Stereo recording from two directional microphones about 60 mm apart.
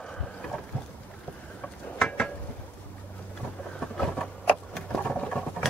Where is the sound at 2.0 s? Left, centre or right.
Centre.